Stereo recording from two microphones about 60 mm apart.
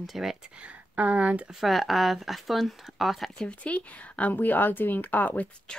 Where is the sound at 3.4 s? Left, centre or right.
Left.